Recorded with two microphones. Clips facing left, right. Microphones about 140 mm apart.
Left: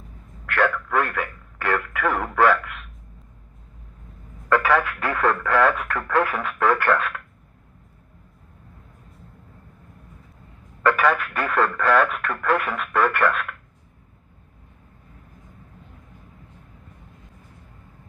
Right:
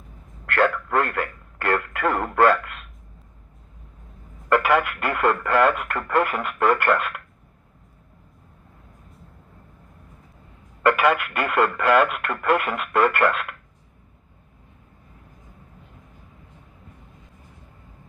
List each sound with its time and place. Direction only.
0.6 s a man's voice: 20° right (ahead or behind)
4.5 s speech: 20° right (ahead or behind)
10.9 s speech: 10° right (ahead or behind)